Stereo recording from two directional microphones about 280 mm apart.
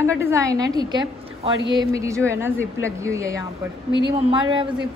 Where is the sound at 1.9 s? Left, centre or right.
Centre.